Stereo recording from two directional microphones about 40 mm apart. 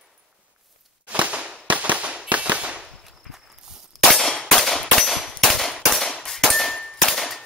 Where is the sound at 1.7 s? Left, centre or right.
Right.